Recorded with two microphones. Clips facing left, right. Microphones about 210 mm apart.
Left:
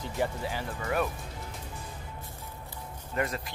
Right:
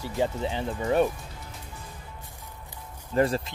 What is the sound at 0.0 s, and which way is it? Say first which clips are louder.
Speech: right 4 dB; 20° right (ahead or behind).